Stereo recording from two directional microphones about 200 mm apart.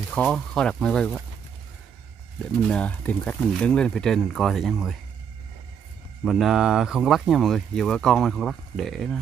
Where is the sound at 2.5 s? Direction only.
5° left (ahead or behind).